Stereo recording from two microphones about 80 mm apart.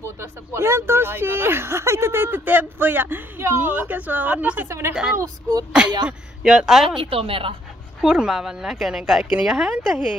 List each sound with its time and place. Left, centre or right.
0.0 s speech: right
4.6 s a woman's voice: right
5.7 s speech: centre
7.0 s a woman's voice: right
8.0 s speech: centre